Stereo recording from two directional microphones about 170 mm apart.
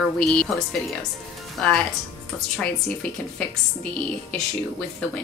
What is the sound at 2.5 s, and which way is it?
Speech, 5° left (ahead or behind).